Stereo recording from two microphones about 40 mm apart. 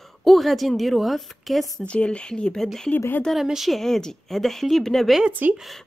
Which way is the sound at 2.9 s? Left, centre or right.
Left.